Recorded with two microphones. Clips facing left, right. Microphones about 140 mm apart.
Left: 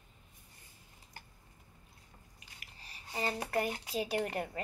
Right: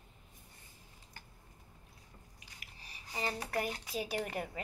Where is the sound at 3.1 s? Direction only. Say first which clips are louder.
Left 2 dB; 20° left (ahead or behind).